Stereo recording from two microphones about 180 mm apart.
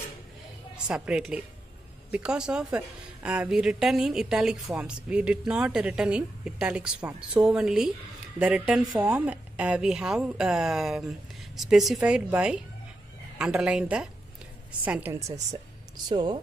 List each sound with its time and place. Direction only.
0.8 s a woman's voice: 5° right (ahead or behind)
16.1 s speech: 25° right (ahead or behind)